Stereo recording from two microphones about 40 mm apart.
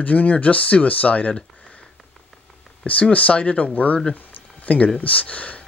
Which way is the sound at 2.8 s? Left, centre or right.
Left.